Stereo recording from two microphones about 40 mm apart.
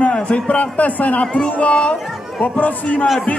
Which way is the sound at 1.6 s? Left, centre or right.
Left.